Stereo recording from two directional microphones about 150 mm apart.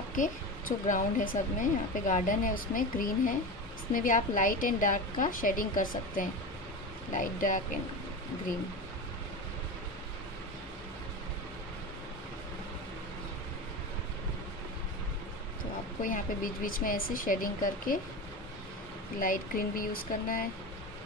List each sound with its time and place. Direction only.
0.1 s speech: 60° left (ahead or behind)
16.0 s speech: 65° left (ahead or behind)
19.1 s speech: 65° left (ahead or behind)